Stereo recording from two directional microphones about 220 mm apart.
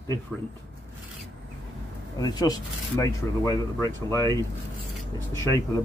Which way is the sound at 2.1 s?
15° left (ahead or behind).